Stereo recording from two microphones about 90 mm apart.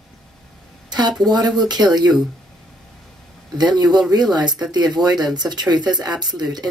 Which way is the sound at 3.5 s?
50° right (ahead or behind).